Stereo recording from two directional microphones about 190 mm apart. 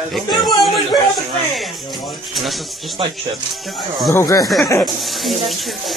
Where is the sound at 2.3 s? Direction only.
Centre (ahead or behind).